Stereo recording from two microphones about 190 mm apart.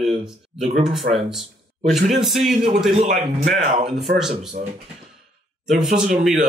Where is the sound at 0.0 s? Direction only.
5° right (ahead or behind).